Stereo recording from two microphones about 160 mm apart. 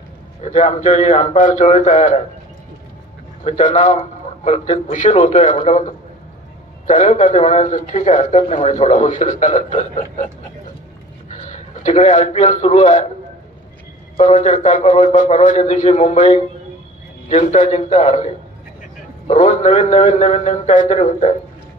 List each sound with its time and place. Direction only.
0.4 s speech: 45° left (ahead or behind)
3.4 s speech: 50° left (ahead or behind)
11.2 s a man's voice: 45° left (ahead or behind)
14.2 s speech: 45° left (ahead or behind)